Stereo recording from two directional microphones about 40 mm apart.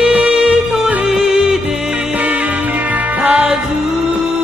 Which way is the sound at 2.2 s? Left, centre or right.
Right.